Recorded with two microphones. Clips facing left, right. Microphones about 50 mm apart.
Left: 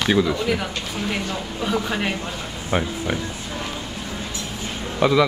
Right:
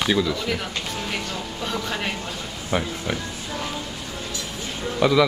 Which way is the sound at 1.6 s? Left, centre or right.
Centre.